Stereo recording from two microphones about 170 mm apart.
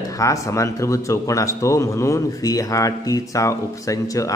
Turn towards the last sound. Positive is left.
turn(degrees=20)  # may be behind; listen again after turning